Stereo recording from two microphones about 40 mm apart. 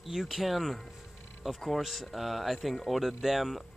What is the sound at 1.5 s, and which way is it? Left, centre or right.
Speech, centre.